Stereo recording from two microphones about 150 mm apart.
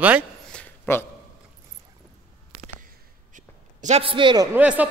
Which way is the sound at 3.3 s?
55° right (ahead or behind).